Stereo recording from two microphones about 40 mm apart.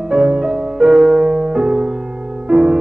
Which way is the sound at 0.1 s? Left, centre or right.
Centre.